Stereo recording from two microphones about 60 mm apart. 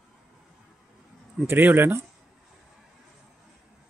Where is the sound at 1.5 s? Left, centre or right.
Right.